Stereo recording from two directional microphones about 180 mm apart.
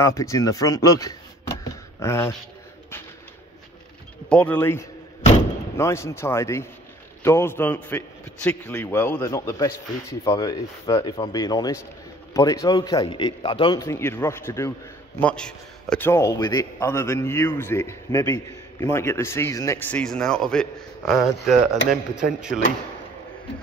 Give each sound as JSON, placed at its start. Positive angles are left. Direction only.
{"t": 0.0, "sound": "speech", "side_deg": 15}
{"t": 4.3, "sound": "a man's voice", "side_deg": 10}
{"t": 13.7, "sound": "a man's voice", "side_deg": 15}